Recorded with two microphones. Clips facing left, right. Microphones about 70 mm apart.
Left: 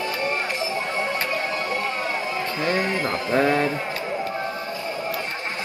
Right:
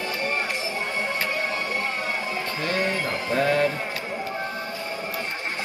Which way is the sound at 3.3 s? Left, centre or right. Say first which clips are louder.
Left 1 dB; left.